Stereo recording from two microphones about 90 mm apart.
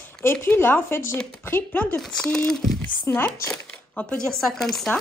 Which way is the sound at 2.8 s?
20° left (ahead or behind).